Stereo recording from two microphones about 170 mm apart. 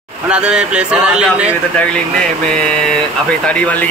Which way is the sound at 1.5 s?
5° left (ahead or behind).